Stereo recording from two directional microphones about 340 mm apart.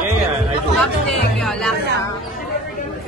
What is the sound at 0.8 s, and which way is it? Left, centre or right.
Music, centre.